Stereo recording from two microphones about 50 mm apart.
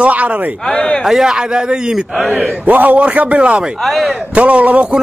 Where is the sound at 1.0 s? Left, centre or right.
Centre.